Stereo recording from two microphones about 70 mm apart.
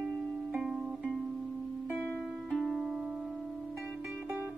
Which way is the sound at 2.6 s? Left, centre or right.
Centre.